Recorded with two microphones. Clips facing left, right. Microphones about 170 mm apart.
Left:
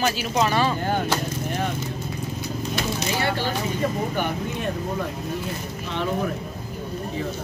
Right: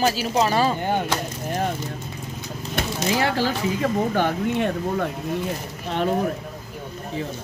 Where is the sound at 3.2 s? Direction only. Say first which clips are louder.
Right 4 dB; 90° right.